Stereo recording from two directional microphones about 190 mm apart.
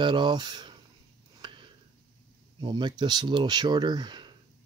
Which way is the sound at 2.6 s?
25° right (ahead or behind).